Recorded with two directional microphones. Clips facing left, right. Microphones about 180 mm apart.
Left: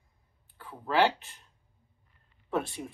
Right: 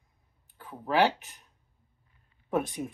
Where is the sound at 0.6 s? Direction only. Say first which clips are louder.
Right 1 dB; 15° right (ahead or behind).